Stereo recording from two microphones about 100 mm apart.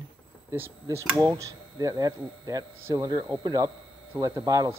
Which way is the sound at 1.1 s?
35° right (ahead or behind).